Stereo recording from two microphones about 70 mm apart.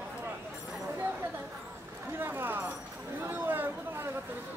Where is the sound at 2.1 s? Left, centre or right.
Right.